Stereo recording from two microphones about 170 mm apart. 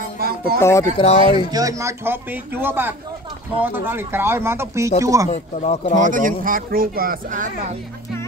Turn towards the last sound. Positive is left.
turn(degrees=-55)  # may be behind; listen again after turning